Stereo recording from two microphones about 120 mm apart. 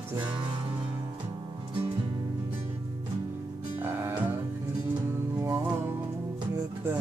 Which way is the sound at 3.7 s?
15° right (ahead or behind).